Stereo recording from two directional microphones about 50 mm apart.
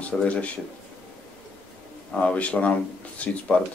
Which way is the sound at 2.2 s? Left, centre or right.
Left.